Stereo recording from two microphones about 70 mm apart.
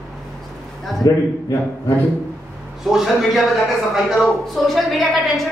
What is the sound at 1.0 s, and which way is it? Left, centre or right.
Speech, left.